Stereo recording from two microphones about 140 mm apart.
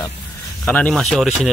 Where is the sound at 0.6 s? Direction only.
10° left (ahead or behind).